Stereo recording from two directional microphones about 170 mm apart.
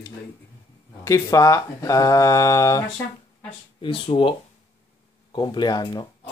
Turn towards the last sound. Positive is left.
turn(degrees=25)  # may be behind; listen again after turning